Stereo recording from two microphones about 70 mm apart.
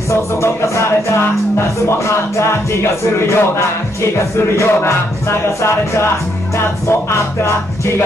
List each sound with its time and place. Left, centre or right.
0.1 s speech: left